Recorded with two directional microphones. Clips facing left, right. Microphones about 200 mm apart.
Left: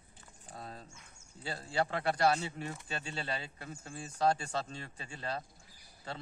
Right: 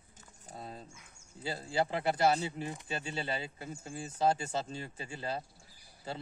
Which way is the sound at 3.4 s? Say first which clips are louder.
Right 3 dB; 25° right (ahead or behind).